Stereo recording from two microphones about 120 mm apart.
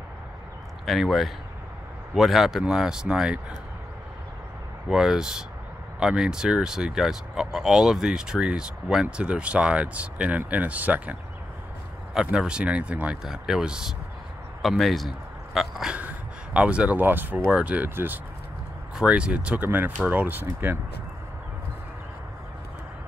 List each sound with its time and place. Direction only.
0.8 s speech: centre (ahead or behind)
4.8 s speech: 5° right (ahead or behind)